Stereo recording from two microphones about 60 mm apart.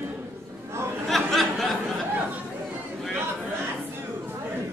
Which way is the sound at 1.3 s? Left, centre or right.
Centre.